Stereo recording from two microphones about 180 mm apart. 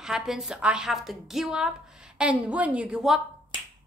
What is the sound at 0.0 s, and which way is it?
A woman's voice, 5° right (ahead or behind).